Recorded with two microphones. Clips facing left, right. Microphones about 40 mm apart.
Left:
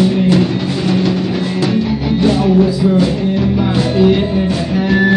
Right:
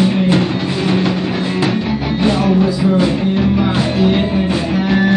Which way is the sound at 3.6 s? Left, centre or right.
Centre.